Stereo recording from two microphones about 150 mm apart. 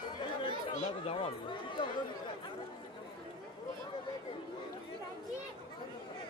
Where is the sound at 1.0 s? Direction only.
35° left (ahead or behind).